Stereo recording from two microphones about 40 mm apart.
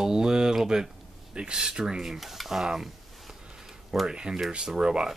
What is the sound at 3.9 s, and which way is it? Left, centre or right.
Speech, centre.